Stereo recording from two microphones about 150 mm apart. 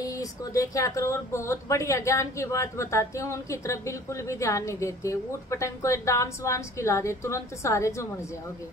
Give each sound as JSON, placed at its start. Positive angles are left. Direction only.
{"t": 0.0, "sound": "speech", "side_deg": 25}